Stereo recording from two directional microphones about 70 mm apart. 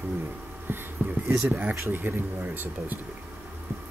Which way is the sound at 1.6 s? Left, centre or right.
Right.